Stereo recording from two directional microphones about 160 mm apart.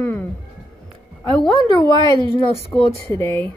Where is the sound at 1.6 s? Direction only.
30° left (ahead or behind).